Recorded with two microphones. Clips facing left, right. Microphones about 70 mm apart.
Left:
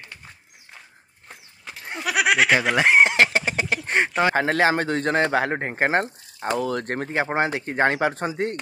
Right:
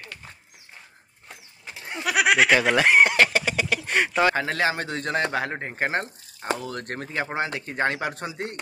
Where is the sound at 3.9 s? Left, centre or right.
Left.